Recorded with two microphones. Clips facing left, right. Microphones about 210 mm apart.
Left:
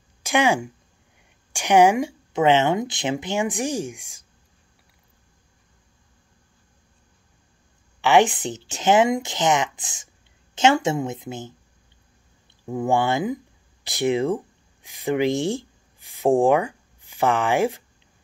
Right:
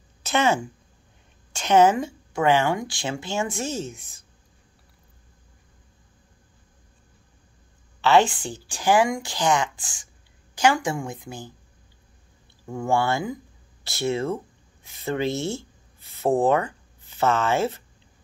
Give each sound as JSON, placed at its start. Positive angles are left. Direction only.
{"t": 0.2, "sound": "speech", "side_deg": 10}
{"t": 8.0, "sound": "speech", "side_deg": 15}
{"t": 12.6, "sound": "speech", "side_deg": 15}